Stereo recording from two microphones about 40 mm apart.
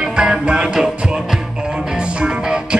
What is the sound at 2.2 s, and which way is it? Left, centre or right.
Music, centre.